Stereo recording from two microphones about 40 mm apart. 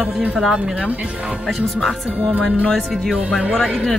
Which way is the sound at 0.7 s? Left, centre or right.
Right.